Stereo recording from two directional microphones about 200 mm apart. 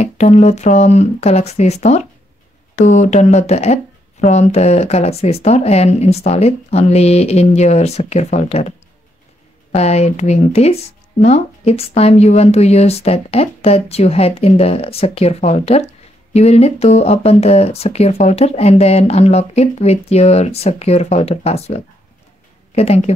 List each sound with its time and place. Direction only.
0.0 s speech: 35° left (ahead or behind)